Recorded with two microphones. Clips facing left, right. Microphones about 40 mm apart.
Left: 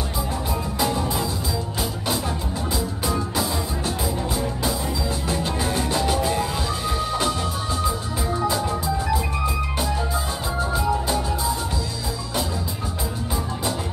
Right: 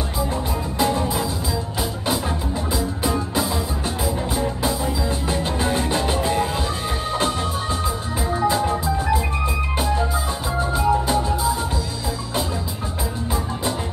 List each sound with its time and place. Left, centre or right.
0.7 s music: centre
5.3 s music: centre
7.8 s music: centre